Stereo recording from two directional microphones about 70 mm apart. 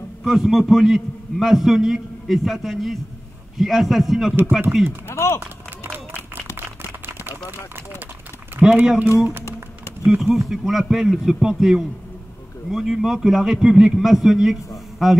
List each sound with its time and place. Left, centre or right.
0.2 s a man's voice: centre
5.0 s speech: left
5.4 s run: right
8.6 s speech: right
9.4 s typing: left
10.0 s a man's voice: centre